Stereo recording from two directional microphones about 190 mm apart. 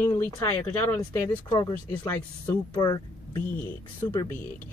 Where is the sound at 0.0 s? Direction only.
15° left (ahead or behind).